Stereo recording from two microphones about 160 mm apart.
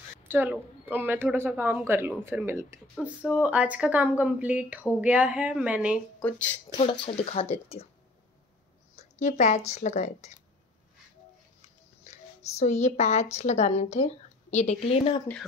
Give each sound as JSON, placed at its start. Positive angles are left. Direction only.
{"t": 0.2, "sound": "a woman's voice", "side_deg": -15}
{"t": 6.1, "sound": "speech", "side_deg": 10}
{"t": 6.8, "sound": "speech", "side_deg": 40}
{"t": 8.9, "sound": "speech", "side_deg": 45}
{"t": 12.1, "sound": "a woman's voice", "side_deg": 45}